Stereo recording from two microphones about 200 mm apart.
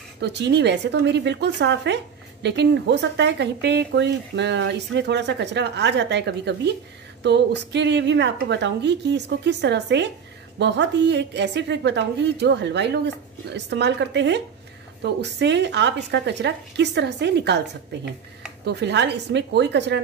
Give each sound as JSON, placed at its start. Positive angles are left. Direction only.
{"t": 0.2, "sound": "speech", "side_deg": -60}